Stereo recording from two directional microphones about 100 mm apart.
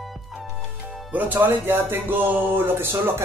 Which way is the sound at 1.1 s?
15° right (ahead or behind).